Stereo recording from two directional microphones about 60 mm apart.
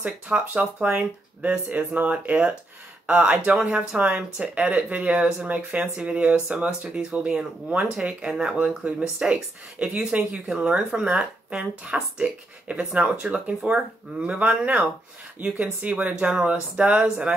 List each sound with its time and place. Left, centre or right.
0.3 s speech: centre